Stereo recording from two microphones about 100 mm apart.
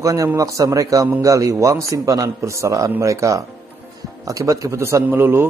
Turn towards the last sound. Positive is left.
turn(degrees=-20)  # may be behind; listen again after turning